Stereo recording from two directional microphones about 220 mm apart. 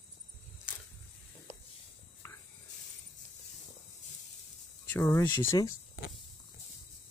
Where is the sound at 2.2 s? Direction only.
10° left (ahead or behind).